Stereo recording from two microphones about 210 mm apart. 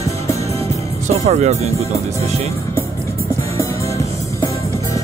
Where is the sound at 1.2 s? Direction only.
30° right (ahead or behind).